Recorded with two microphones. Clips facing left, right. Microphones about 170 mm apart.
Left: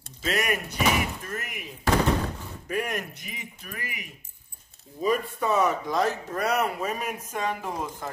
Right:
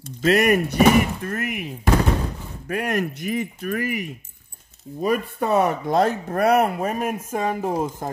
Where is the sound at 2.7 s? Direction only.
65° right (ahead or behind).